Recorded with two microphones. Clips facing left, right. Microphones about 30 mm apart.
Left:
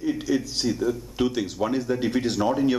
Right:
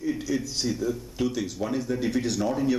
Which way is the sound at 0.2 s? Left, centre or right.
Left.